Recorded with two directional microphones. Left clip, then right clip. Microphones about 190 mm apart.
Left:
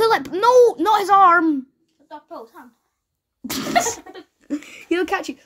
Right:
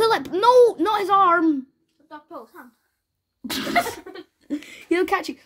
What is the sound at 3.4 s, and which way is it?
Cough, 15° left (ahead or behind).